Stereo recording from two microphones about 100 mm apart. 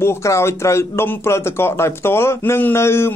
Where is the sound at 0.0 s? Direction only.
30° left (ahead or behind).